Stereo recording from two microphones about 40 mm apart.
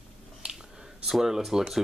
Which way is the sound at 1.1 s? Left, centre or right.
Centre.